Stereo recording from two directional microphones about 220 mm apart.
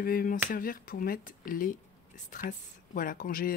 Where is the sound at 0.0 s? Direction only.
40° left (ahead or behind).